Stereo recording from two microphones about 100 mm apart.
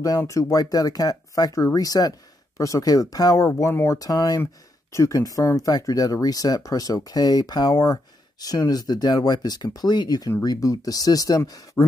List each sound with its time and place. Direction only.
0.2 s speech: 30° left (ahead or behind)